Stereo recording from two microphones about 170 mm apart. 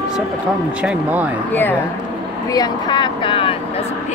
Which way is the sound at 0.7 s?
5° right (ahead or behind).